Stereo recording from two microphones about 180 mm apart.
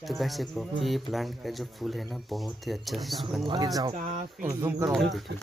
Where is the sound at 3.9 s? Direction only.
45° right (ahead or behind).